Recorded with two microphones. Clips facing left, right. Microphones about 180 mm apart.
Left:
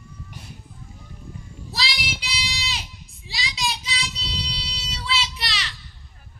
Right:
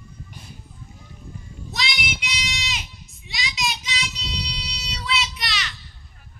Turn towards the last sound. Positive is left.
turn(degrees=30)  # may be behind; listen again after turning